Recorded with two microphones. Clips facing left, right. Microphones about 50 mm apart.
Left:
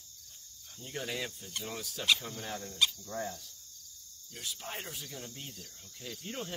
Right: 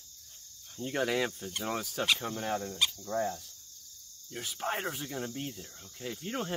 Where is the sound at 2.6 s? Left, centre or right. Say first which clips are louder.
Even; centre.